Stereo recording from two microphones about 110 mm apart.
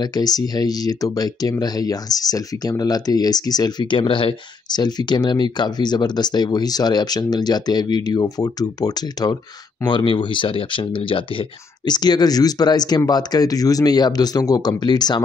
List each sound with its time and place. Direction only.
0.0 s speech: 35° left (ahead or behind)